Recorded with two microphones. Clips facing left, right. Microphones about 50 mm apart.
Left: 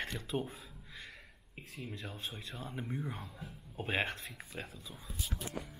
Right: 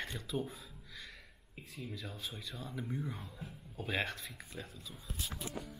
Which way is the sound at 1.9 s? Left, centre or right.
Left.